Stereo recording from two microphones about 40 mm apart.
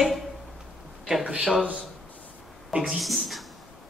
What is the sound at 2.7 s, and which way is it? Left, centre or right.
Speech, centre.